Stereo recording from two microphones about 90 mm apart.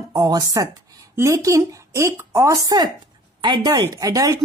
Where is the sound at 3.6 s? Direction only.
45° right (ahead or behind).